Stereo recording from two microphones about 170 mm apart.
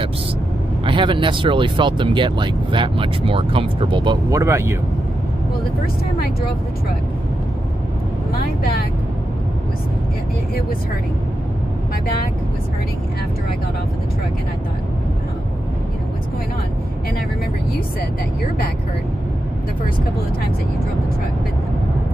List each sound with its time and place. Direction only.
0.8 s speech: 30° right (ahead or behind)
4.3 s speech: 20° right (ahead or behind)
6.1 s speech: 60° left (ahead or behind)